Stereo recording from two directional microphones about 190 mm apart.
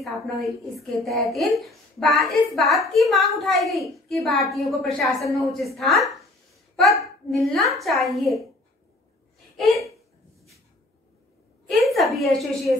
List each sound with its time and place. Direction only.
0.0 s a woman's voice: centre (ahead or behind)
7.2 s a woman's voice: centre (ahead or behind)
9.6 s speech: centre (ahead or behind)
11.7 s a woman's voice: centre (ahead or behind)